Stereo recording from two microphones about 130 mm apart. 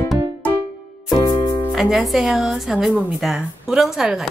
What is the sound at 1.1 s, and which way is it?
Music, 35° left (ahead or behind).